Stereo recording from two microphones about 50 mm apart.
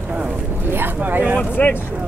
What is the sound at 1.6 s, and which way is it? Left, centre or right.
Speech, left.